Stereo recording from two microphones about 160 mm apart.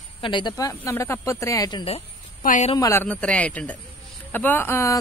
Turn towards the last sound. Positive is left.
turn(degrees=15)  # may be behind; listen again after turning